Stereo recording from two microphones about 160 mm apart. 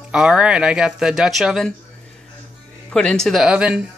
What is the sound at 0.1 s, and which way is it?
Speech, 5° right (ahead or behind).